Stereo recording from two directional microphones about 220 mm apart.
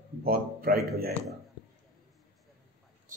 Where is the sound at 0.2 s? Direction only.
40° right (ahead or behind).